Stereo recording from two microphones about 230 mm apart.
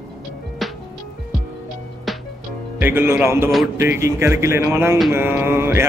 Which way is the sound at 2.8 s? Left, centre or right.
Centre.